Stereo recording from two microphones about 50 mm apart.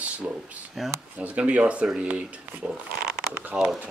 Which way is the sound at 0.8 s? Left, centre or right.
Centre.